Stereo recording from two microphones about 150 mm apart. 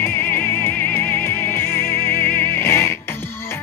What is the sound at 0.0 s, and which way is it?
Music, 15° left (ahead or behind).